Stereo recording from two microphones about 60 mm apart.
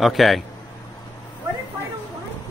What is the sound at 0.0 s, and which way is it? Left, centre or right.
Speech, centre.